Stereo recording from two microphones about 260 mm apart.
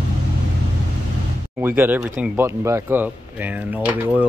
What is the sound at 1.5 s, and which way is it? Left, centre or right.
Speech, centre.